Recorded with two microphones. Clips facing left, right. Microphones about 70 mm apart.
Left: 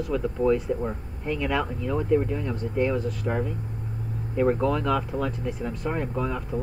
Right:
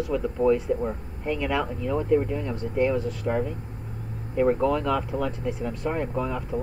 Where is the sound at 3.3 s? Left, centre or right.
Centre.